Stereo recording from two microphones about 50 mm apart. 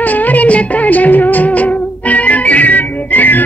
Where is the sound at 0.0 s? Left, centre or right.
Left.